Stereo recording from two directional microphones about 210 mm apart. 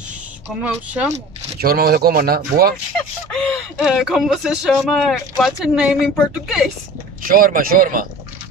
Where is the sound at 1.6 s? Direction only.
45° right (ahead or behind).